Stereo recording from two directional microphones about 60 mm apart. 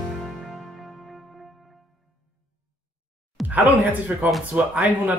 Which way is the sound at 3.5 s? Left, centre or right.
Right.